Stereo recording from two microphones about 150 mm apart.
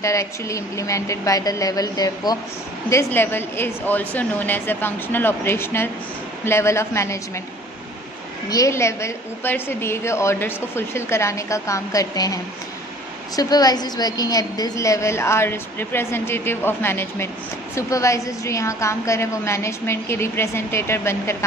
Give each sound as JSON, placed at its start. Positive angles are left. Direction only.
{"t": 0.0, "sound": "a woman's voice", "side_deg": 20}
{"t": 8.5, "sound": "a woman's voice", "side_deg": 20}
{"t": 13.4, "sound": "a woman's voice", "side_deg": 25}